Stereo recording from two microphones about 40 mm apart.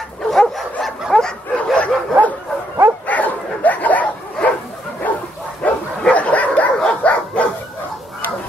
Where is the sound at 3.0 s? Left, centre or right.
Left.